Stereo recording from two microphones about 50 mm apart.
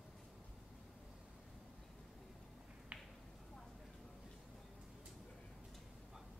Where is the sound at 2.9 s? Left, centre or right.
Right.